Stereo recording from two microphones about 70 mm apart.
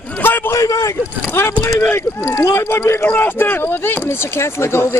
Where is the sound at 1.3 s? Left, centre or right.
Left.